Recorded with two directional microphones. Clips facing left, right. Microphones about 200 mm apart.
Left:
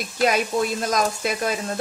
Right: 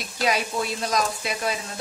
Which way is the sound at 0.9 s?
50° left (ahead or behind).